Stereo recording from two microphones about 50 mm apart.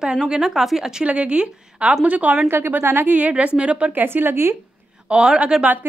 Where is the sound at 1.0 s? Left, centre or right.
Right.